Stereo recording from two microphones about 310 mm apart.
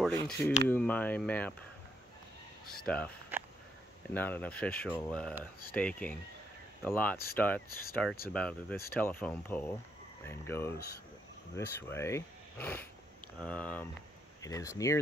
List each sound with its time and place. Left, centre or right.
0.0 s speech: centre
2.6 s speech: left
2.9 s speech: centre